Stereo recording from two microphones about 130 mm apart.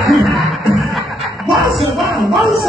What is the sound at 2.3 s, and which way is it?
Music, centre (ahead or behind).